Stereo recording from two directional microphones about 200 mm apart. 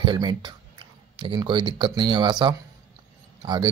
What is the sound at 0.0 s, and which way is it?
Speech, 20° right (ahead or behind).